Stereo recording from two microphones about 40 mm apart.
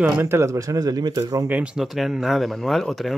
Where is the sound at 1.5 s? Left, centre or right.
Right.